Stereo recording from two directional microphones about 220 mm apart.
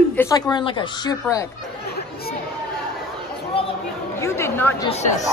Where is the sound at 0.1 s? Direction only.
15° left (ahead or behind).